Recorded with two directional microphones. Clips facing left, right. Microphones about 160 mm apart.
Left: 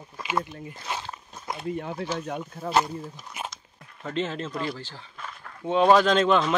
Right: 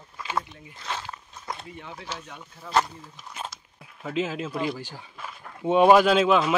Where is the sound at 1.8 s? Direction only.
45° left (ahead or behind).